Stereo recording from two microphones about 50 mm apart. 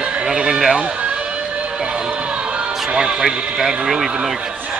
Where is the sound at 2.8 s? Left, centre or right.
Centre.